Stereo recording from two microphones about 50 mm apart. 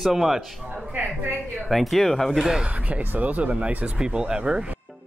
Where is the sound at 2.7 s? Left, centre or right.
Right.